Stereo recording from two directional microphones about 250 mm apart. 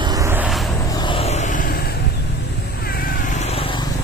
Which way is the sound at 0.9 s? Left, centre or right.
Centre.